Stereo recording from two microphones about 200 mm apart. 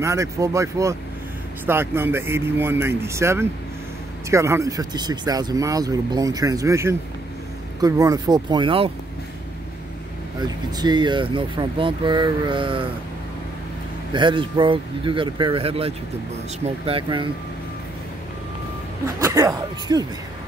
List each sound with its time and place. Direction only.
0.0 s speech: 15° right (ahead or behind)
10.4 s speech: 20° right (ahead or behind)
14.1 s speech: 25° right (ahead or behind)
19.0 s speech: 15° right (ahead or behind)